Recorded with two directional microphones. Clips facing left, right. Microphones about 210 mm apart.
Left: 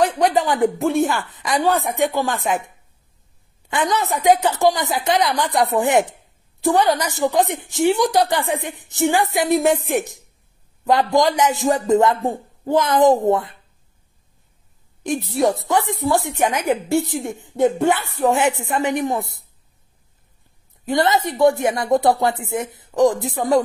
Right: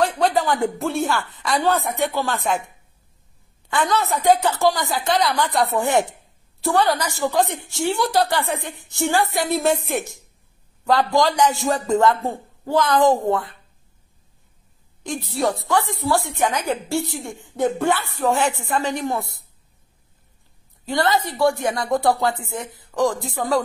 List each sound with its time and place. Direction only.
0.0 s a woman's voice: 15° left (ahead or behind)
3.6 s a woman's voice: 20° left (ahead or behind)
15.0 s a woman's voice: 20° left (ahead or behind)
20.8 s a woman's voice: 20° left (ahead or behind)